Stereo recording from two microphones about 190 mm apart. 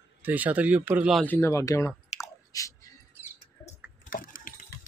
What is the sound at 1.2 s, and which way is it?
Speech, 15° left (ahead or behind).